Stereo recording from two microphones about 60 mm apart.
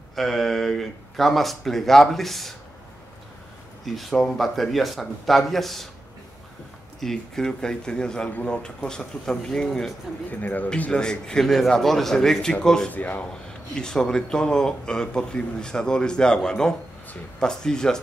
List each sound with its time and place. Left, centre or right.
0.1 s speech: centre
3.8 s speech: centre
7.0 s speech: centre
10.4 s speech: left
10.9 s speech: centre
12.9 s speech: left
13.3 s speech: centre